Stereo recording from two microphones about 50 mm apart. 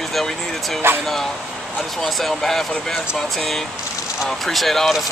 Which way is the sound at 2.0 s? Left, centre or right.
Centre.